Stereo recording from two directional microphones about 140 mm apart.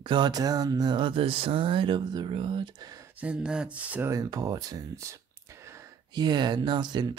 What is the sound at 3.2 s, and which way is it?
Speech, 10° right (ahead or behind).